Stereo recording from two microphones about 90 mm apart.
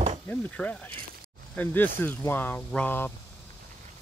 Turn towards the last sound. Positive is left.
turn(degrees=20)  # may be behind; listen again after turning